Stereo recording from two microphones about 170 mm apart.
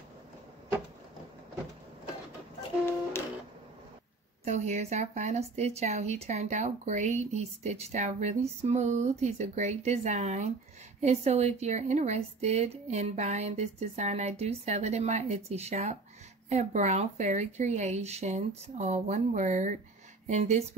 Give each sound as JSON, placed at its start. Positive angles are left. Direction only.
{"t": 4.5, "sound": "a woman's voice", "side_deg": -40}